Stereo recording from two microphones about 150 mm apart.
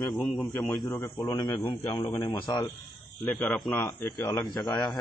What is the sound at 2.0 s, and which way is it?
A man's voice, 20° left (ahead or behind).